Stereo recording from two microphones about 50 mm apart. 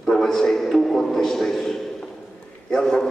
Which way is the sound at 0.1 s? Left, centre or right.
Centre.